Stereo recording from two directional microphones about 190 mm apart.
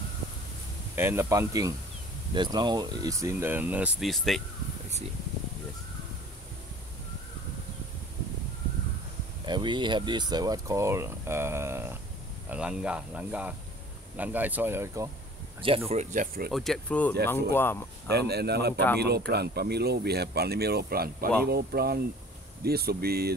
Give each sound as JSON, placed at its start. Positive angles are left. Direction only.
{"t": 0.9, "sound": "speech", "side_deg": -15}
{"t": 9.5, "sound": "speech", "side_deg": -25}
{"t": 15.9, "sound": "speech", "side_deg": -40}
{"t": 16.4, "sound": "speech", "side_deg": 0}
{"t": 18.1, "sound": "speech", "side_deg": -60}